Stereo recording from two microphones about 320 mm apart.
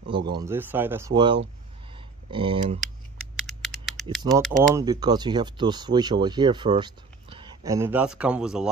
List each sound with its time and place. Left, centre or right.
0.1 s speech: centre
2.0 s computer keyboard: centre
3.3 s typing: centre
4.4 s speech: centre